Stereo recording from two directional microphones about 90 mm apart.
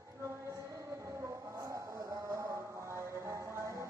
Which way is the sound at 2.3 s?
30° right (ahead or behind).